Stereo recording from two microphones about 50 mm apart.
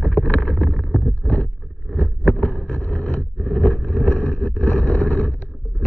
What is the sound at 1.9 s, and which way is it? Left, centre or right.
Boat, left.